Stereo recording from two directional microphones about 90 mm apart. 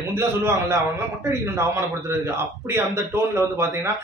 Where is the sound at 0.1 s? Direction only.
30° right (ahead or behind).